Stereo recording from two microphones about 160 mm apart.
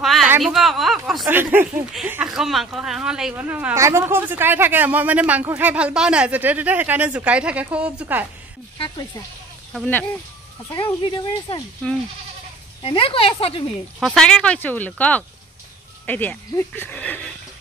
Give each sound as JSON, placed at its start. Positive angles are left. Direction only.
{"t": 0.0, "sound": "a sound", "side_deg": 0}
{"t": 0.4, "sound": "speech", "side_deg": 0}
{"t": 1.2, "sound": "speech", "side_deg": -15}
{"t": 8.7, "sound": "a sound", "side_deg": 30}
{"t": 9.7, "sound": "speech", "side_deg": 5}
{"t": 10.7, "sound": "speech", "side_deg": 25}
{"t": 12.8, "sound": "speech", "side_deg": 35}
{"t": 13.9, "sound": "speech", "side_deg": 0}